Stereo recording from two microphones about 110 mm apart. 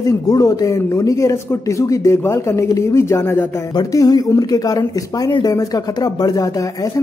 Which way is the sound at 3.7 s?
35° left (ahead or behind).